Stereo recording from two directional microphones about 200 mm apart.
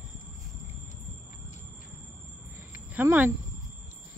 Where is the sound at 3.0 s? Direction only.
10° right (ahead or behind).